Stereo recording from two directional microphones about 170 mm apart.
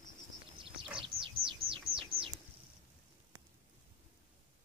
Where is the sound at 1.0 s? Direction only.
30° right (ahead or behind).